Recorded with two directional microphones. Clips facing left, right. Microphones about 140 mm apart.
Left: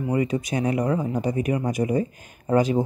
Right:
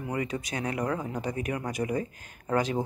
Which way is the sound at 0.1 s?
15° left (ahead or behind).